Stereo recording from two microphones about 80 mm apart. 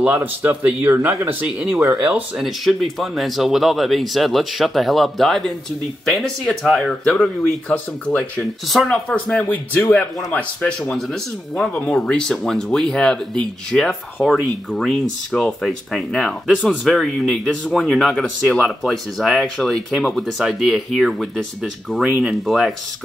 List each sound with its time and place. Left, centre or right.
0.0 s speech: right
2.3 s speech: centre
7.1 s speech: centre
8.4 s speech: centre
10.8 s speech: centre